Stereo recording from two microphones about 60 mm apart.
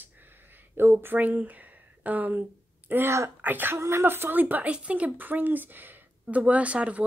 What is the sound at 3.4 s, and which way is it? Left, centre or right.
Speech, right.